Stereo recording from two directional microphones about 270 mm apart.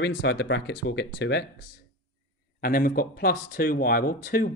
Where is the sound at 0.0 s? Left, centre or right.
Left.